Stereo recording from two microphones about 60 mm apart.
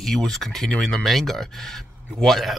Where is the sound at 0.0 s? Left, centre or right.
Centre.